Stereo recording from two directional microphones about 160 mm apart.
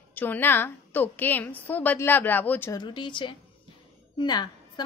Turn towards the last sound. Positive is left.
turn(degrees=25)  # may be behind; listen again after turning